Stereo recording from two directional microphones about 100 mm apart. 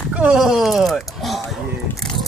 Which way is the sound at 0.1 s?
10° right (ahead or behind).